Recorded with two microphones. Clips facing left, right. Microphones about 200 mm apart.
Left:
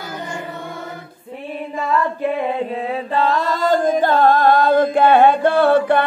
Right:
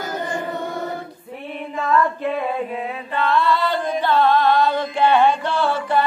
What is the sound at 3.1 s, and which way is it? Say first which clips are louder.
Music: right 1 dB; 40° left (ahead or behind).